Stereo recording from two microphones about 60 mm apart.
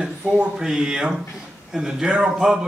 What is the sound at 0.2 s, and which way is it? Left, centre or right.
Speech, right.